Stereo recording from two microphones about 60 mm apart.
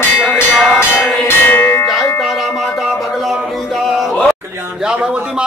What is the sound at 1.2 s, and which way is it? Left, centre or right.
Music, left.